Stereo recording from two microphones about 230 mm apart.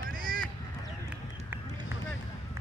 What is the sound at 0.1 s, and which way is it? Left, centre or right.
Honk, right.